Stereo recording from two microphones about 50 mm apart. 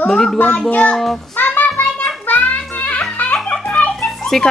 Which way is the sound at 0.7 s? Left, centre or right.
Left.